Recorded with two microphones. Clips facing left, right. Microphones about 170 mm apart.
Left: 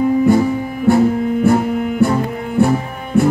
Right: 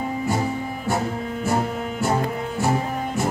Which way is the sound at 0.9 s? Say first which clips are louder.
Left 13 dB; 60° left (ahead or behind).